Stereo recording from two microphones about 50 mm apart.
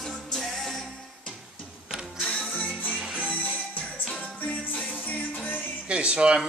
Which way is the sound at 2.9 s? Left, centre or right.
Right.